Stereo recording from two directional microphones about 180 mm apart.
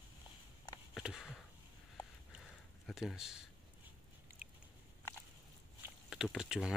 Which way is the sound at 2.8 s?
Centre (ahead or behind).